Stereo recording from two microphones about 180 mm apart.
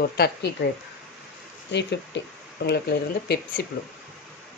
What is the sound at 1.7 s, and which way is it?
Speech, 70° left (ahead or behind).